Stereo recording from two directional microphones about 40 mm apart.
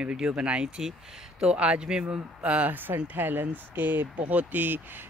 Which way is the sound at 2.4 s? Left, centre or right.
Right.